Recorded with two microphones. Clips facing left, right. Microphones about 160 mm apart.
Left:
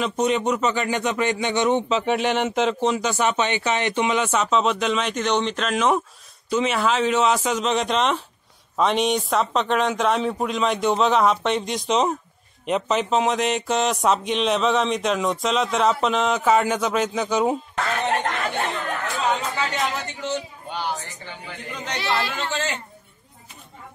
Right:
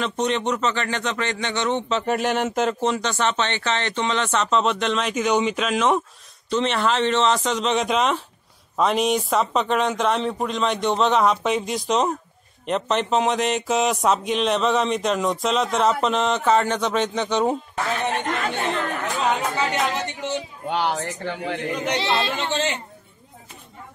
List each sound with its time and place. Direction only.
0.0 s speech: 5° left (ahead or behind)
1.9 s speech: centre (ahead or behind)
19.6 s a sound: 20° right (ahead or behind)
20.6 s speech: 70° right (ahead or behind)
21.8 s speech: 20° right (ahead or behind)